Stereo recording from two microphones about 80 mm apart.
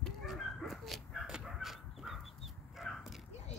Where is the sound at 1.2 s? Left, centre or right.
Centre.